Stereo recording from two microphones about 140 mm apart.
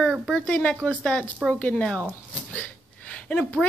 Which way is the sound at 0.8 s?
5° left (ahead or behind).